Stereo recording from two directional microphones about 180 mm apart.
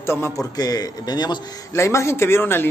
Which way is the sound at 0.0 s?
15° left (ahead or behind).